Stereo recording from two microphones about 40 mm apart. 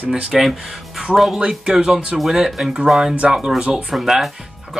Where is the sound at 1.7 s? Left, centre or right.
Centre.